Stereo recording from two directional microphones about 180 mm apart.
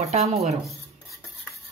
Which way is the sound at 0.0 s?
35° right (ahead or behind).